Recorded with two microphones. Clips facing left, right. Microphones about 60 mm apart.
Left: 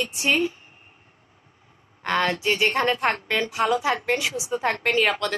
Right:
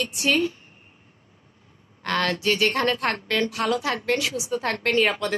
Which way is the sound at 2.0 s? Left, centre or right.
Centre.